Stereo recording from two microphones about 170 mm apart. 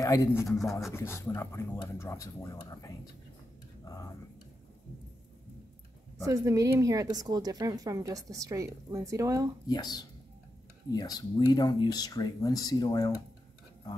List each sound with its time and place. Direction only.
0.0 s speech: 20° left (ahead or behind)
0.5 s speech: centre (ahead or behind)
0.9 s speech: 15° left (ahead or behind)
3.8 s a sound: 20° left (ahead or behind)
6.2 s speech: 20° right (ahead or behind)
9.7 s speech: 25° left (ahead or behind)